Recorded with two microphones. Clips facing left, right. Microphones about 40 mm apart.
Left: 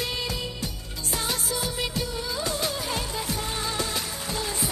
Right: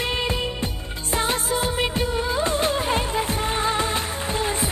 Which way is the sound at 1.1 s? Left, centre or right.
Right.